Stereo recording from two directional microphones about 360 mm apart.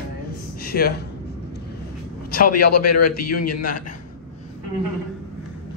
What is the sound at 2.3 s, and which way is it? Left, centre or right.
Speech, left.